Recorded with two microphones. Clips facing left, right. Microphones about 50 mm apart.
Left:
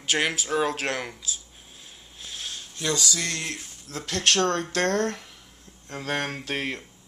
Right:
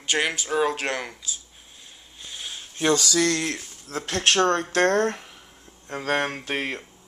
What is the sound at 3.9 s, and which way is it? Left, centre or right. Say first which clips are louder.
Speech: right 2 dB; right.